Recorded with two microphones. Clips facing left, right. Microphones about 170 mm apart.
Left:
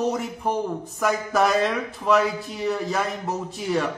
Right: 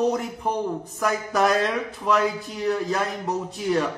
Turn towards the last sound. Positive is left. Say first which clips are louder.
# right 1 dB
turn(degrees=0)  # may be behind; listen again after turning